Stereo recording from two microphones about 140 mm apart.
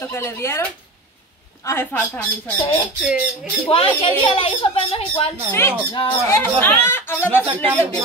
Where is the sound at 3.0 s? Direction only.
10° right (ahead or behind).